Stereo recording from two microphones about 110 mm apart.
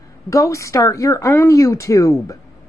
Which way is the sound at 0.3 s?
30° left (ahead or behind).